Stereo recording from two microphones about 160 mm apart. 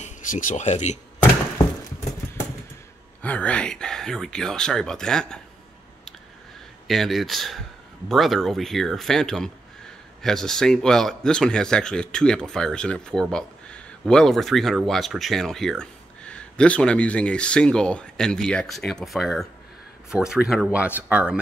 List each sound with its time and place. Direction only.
0.0 s speech: 55° left (ahead or behind)
3.2 s a man's voice: 10° left (ahead or behind)
6.9 s a man's voice: centre (ahead or behind)